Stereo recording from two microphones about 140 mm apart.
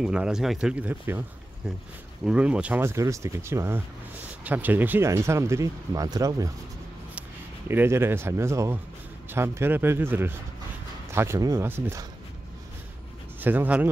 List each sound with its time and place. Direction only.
0.0 s speech: 5° right (ahead or behind)
2.2 s speech: 10° right (ahead or behind)
13.4 s speech: 15° right (ahead or behind)